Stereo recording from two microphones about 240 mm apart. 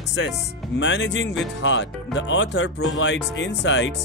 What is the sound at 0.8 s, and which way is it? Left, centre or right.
Speech, left.